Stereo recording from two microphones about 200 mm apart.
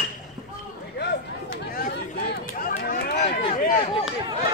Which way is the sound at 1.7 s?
50° left (ahead or behind).